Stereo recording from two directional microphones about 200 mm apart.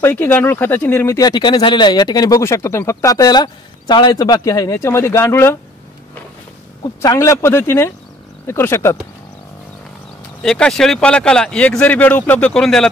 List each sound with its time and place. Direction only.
0.0 s speech: 10° left (ahead or behind)
6.8 s speech: 15° left (ahead or behind)
10.4 s speech: 5° left (ahead or behind)